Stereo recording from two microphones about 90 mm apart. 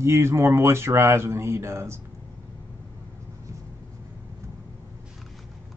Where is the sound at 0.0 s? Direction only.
30° right (ahead or behind).